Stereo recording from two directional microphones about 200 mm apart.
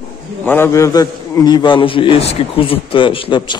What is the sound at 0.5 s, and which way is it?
A man's voice, 10° left (ahead or behind).